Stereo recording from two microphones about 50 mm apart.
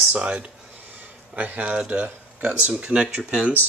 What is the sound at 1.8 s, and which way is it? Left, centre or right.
Speech, right.